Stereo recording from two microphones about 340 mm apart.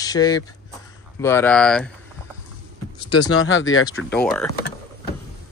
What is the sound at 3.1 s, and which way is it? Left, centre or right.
Speech, left.